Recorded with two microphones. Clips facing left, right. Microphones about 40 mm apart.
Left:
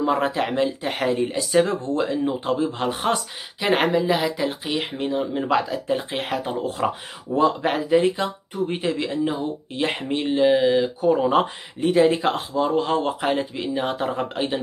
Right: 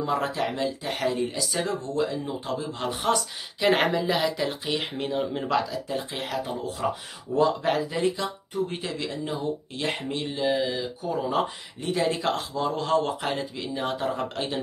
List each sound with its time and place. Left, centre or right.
0.0 s speech: left
3.6 s speech: centre
5.5 s speech: left
7.3 s speech: left
11.8 s speech: left